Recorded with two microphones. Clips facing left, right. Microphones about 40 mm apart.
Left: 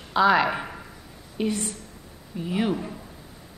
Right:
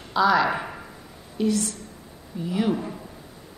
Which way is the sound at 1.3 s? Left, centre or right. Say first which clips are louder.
Right 3 dB; left.